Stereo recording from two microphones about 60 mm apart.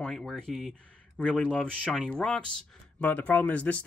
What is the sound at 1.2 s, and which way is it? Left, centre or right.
Speech, centre.